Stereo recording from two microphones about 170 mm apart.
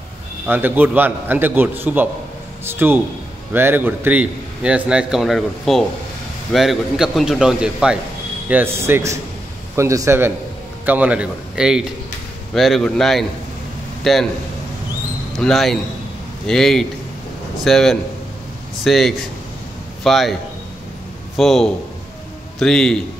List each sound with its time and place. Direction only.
0.5 s a man's voice: 10° right (ahead or behind)
15.3 s a man's voice: centre (ahead or behind)
21.4 s a man's voice: centre (ahead or behind)